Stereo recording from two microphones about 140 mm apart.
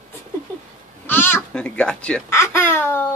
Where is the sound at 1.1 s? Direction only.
15° left (ahead or behind).